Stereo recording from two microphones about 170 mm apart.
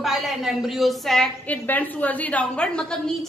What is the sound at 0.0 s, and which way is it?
A woman's voice, centre (ahead or behind).